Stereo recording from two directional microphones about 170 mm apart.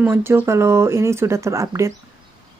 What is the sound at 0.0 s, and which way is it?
A woman's voice, 15° right (ahead or behind).